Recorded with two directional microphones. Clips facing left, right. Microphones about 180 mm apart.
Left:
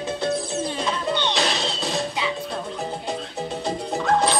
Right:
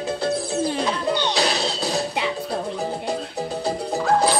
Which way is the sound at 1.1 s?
10° right (ahead or behind).